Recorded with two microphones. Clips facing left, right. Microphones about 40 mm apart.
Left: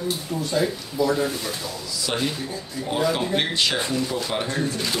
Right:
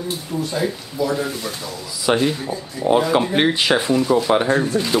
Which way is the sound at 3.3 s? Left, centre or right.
Right.